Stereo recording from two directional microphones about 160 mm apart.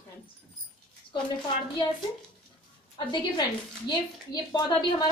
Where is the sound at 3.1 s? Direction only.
25° left (ahead or behind).